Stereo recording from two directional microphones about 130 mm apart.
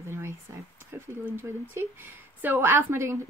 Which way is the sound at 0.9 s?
20° right (ahead or behind).